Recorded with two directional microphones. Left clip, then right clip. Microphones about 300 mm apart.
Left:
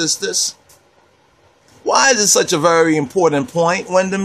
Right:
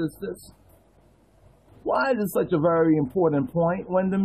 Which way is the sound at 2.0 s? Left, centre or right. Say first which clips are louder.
Left 11 dB; centre.